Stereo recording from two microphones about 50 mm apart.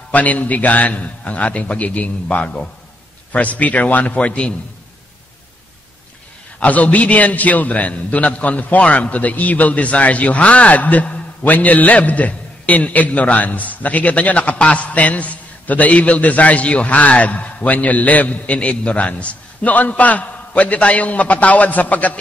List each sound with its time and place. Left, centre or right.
0.1 s a man's voice: left
6.6 s a man's voice: left